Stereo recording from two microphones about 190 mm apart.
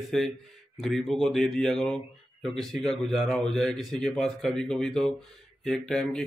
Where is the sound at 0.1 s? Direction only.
Centre (ahead or behind).